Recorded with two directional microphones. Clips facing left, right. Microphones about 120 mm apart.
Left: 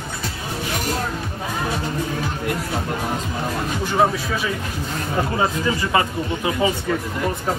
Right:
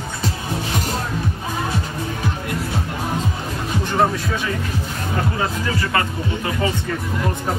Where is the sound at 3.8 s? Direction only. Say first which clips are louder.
Even; 5° left (ahead or behind).